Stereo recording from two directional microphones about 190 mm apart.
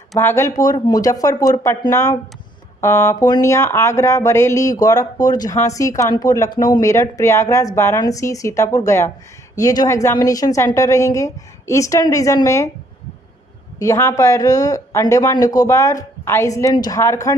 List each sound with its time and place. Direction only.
0.2 s speech: 15° left (ahead or behind)
13.7 s speech: 15° left (ahead or behind)